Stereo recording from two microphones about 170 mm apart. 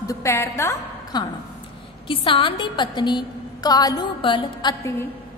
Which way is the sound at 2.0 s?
30° left (ahead or behind).